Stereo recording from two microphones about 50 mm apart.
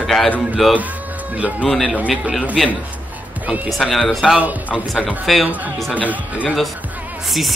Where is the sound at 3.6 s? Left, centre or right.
Centre.